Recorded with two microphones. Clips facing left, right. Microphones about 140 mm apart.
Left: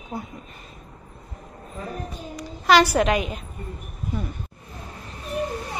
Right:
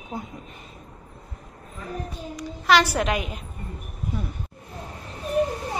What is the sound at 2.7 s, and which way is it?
Speech, centre (ahead or behind).